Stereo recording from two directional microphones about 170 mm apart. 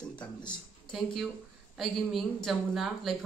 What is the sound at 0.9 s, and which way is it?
Speech, centre (ahead or behind).